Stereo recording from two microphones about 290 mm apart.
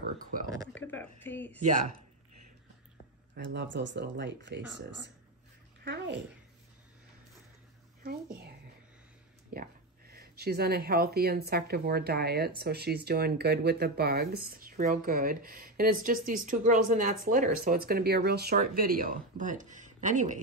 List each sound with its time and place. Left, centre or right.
0.0 s a sound: right
0.7 s speech: centre
3.3 s speech: right
8.0 s speech: right